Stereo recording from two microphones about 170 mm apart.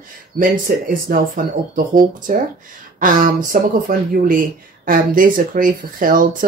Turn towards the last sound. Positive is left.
turn(degrees=-55)  # may be behind; listen again after turning